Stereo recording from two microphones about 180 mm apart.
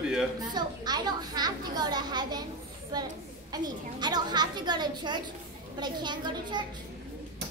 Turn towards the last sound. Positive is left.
turn(degrees=-25)  # may be behind; listen again after turning